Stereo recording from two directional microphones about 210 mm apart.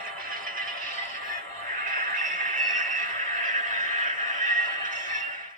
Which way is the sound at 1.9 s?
40° right (ahead or behind).